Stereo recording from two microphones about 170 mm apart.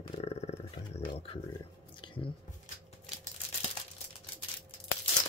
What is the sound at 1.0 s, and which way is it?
Speech, 30° left (ahead or behind).